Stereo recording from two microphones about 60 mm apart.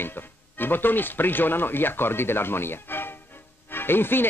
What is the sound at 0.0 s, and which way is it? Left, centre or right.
Speech, left.